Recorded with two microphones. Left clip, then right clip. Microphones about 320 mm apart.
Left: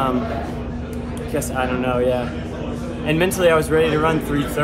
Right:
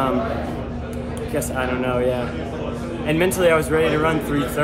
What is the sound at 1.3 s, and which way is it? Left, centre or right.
Speech, centre.